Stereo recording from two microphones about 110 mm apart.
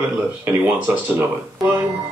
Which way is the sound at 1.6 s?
20° right (ahead or behind).